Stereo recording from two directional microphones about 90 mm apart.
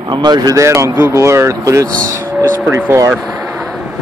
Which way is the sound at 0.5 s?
35° right (ahead or behind).